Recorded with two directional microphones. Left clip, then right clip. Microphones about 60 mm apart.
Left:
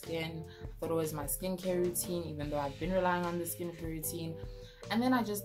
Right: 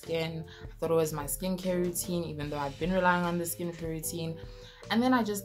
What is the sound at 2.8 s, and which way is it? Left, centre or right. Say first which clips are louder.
Speech: right 6 dB; right.